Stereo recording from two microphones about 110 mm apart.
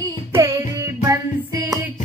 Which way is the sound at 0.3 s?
25° right (ahead or behind).